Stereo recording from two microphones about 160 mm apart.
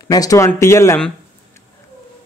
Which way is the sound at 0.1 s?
20° left (ahead or behind).